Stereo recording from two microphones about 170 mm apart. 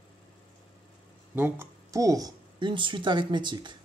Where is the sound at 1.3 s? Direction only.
10° right (ahead or behind).